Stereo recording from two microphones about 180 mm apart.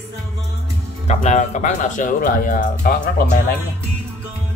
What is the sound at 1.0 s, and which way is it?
Speech, 40° left (ahead or behind).